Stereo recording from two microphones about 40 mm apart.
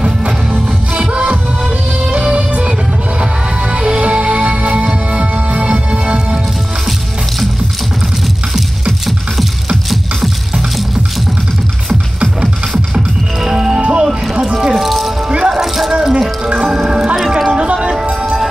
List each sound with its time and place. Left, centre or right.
0.0 s music: right
3.7 s music: right
13.5 s music: centre
13.7 s music: right
14.3 s music: centre
15.2 s music: centre
15.6 s a sound: centre
15.9 s music: right
18.2 s music: centre